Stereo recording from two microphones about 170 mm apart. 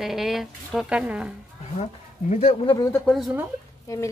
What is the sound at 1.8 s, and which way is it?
Speech, 45° left (ahead or behind).